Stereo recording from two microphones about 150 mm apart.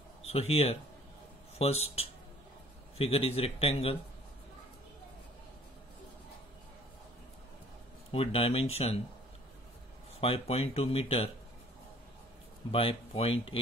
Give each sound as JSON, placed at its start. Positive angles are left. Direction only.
{"t": 0.2, "sound": "a man's voice", "side_deg": 40}
{"t": 8.1, "sound": "speech", "side_deg": 40}
{"t": 10.2, "sound": "speech", "side_deg": 40}
{"t": 12.7, "sound": "speech", "side_deg": 40}